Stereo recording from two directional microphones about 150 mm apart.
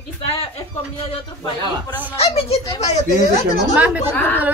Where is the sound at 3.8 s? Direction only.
10° right (ahead or behind).